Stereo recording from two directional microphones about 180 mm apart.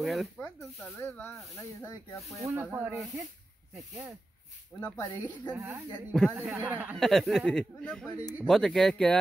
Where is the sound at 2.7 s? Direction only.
10° right (ahead or behind).